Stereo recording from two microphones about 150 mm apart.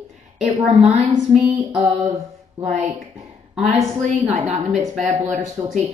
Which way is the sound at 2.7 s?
50° right (ahead or behind).